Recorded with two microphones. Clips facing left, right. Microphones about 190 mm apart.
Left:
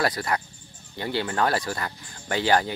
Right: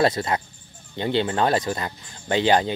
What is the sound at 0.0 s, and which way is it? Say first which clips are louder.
Speech: right 4 dB; 25° right (ahead or behind).